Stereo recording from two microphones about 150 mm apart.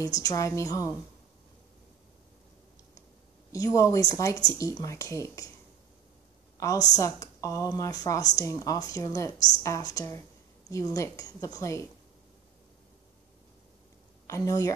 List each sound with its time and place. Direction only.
0.2 s a woman's voice: 20° left (ahead or behind)
3.5 s a woman's voice: 20° left (ahead or behind)
6.6 s a woman's voice: 25° left (ahead or behind)
14.2 s speech: 20° left (ahead or behind)